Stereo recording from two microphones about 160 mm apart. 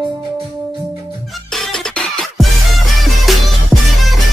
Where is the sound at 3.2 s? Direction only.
Centre (ahead or behind).